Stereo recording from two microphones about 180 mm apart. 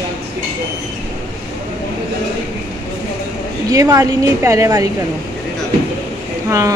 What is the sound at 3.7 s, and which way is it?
Speech, 20° right (ahead or behind).